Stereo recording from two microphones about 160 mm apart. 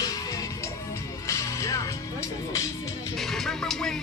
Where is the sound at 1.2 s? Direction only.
20° left (ahead or behind).